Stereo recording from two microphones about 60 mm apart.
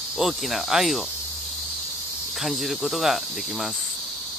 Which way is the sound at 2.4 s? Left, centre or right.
Centre.